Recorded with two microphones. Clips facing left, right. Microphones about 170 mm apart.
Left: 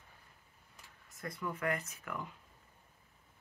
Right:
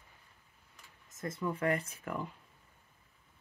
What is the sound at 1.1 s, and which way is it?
Speech, 25° right (ahead or behind).